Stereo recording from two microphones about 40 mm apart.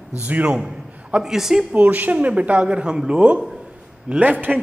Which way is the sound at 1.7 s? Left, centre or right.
Right.